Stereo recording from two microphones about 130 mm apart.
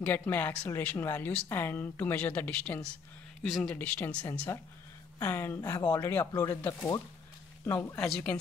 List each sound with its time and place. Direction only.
0.0 s a woman's voice: 15° left (ahead or behind)
8.0 s a woman's voice: 5° left (ahead or behind)